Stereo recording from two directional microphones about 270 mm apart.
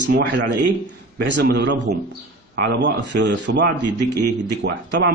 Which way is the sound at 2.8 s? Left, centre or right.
Right.